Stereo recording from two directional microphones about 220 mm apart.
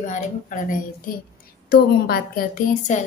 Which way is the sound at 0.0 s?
35° left (ahead or behind).